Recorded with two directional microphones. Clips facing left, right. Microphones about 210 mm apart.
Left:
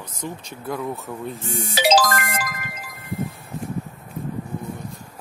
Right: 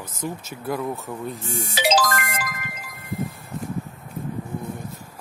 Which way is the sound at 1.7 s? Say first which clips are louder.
Left 3 dB; 35° left (ahead or behind).